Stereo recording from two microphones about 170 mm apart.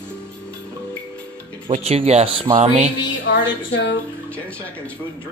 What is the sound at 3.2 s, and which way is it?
Speech, 90° left.